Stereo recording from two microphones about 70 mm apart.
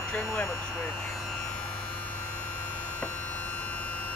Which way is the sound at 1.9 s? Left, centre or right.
Left.